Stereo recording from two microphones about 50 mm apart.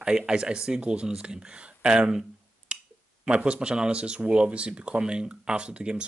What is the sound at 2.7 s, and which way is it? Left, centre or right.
Clicking, right.